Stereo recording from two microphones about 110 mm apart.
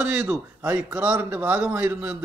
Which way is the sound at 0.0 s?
10° right (ahead or behind).